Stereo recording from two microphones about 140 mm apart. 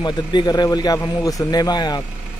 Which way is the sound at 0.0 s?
30° left (ahead or behind).